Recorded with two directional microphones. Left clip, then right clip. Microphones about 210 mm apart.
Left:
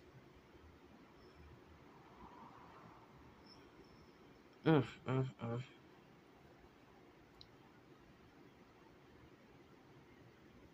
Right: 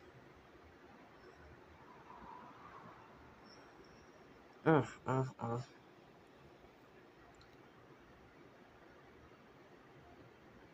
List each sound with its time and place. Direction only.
4.6 s speech: 30° left (ahead or behind)
5.0 s speech: 15° left (ahead or behind)